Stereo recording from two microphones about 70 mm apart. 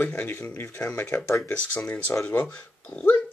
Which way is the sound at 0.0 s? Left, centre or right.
Left.